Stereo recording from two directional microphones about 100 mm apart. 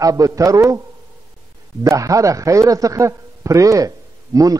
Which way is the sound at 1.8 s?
35° right (ahead or behind).